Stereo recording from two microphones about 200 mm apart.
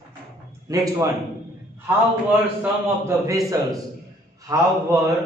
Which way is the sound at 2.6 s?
15° right (ahead or behind).